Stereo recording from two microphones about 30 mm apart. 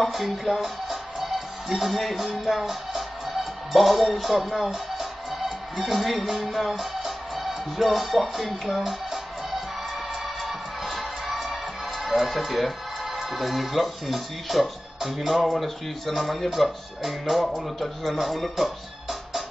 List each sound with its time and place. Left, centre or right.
0.0 s music: centre
1.7 s speech: centre
4.7 s music: centre
8.7 s speech: centre
10.2 s music: centre
12.0 s speech: centre
15.6 s music: centre
17.7 s speech: centre